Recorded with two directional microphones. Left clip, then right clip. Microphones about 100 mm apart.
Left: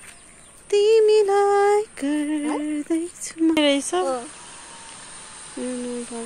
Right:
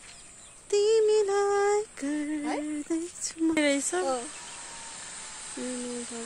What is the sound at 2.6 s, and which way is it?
Speech, 5° left (ahead or behind).